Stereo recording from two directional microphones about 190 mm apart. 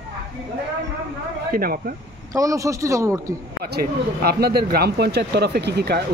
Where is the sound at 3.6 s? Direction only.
55° right (ahead or behind).